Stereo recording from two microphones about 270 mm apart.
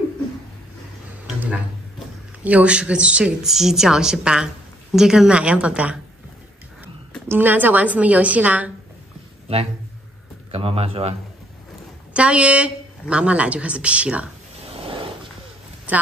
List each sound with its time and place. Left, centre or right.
1.2 s a sound: centre
2.4 s a woman's voice: centre
10.5 s speech: right
12.1 s a woman's voice: centre
14.7 s a sound: centre
15.9 s a woman's voice: centre